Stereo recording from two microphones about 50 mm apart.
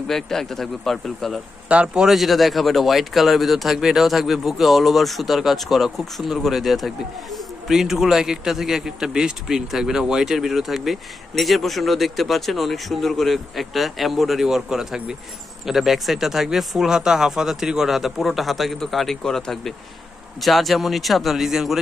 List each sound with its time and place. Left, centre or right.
0.1 s speech: centre
1.7 s a man's voice: right
2.0 s speech: centre